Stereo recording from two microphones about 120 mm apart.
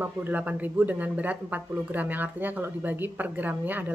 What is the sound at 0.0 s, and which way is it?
Speech, 15° right (ahead or behind).